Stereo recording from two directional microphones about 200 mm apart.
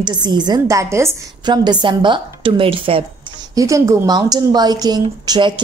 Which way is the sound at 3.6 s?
15° right (ahead or behind).